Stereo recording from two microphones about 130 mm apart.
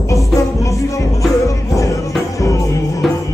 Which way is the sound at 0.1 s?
25° left (ahead or behind).